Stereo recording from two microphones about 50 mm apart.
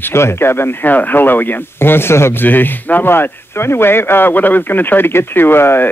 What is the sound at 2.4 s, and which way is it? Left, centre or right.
Speech, left.